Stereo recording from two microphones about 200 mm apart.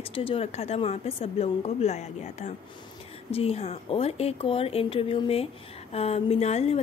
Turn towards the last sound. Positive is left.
turn(degrees=30)  # may be behind; listen again after turning